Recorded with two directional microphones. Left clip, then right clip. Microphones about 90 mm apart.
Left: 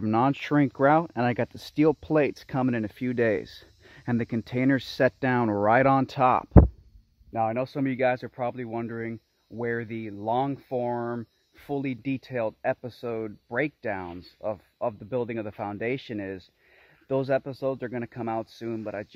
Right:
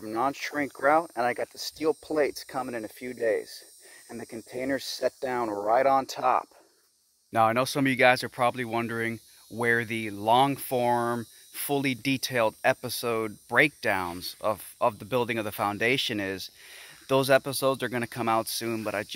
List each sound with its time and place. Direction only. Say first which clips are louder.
0.0 s speech: left 4 dB; 50° left (ahead or behind)
2.1 s speech: left 2 dB; 30° left (ahead or behind)
7.3 s speech: right 4 dB; 5° right (ahead or behind)
10.9 s speech: right 5 dB; 10° right (ahead or behind)
11.5 s speech: right 4 dB; 5° left (ahead or behind)